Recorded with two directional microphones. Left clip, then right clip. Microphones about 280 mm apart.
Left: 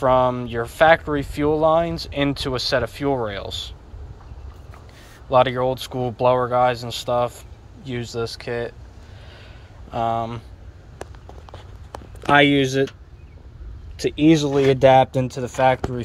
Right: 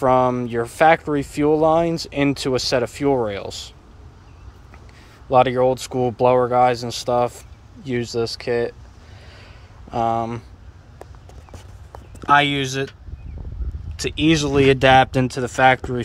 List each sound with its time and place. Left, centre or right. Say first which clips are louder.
0.0 s speech: right 1 dB; right
5.3 s speech: right 2 dB; right
9.3 s a sound: even; right
12.3 s speech: left 1 dB; centre
13.9 s speech: left 1 dB; centre
14.4 s speech: even; right